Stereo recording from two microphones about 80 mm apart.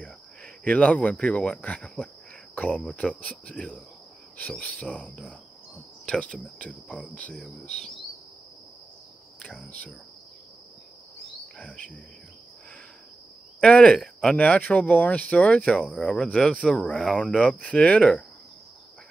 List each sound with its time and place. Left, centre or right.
0.0 s speech: centre
9.4 s speech: centre
11.5 s cricket: centre
13.6 s speech: centre